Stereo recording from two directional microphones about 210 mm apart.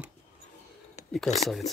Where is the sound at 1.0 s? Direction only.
35° left (ahead or behind).